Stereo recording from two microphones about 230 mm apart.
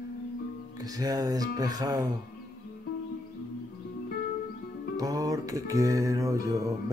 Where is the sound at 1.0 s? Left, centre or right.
Centre.